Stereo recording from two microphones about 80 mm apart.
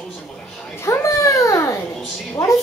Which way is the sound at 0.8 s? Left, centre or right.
Left.